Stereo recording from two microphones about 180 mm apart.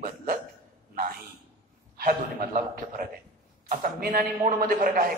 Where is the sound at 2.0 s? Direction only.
50° right (ahead or behind).